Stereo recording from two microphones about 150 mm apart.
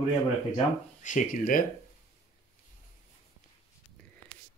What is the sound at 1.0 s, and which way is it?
Speech, 60° left (ahead or behind).